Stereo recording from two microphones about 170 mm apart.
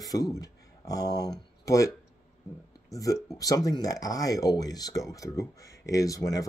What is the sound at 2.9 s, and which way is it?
Speech, 20° left (ahead or behind).